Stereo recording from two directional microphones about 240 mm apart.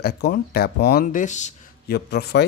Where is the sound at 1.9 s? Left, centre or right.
Left.